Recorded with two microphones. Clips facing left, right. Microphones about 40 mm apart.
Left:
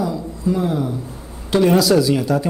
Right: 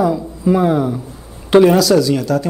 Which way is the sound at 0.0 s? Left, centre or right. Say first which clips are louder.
Right 6 dB; right.